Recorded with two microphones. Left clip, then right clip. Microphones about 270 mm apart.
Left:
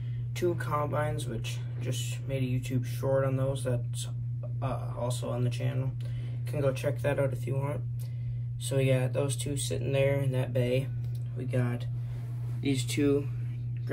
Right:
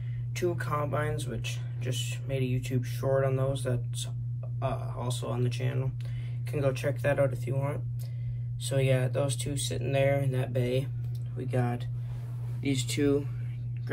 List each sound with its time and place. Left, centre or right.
0.6 s speech: centre